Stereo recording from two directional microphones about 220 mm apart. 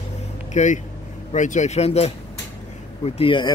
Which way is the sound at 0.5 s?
30° left (ahead or behind).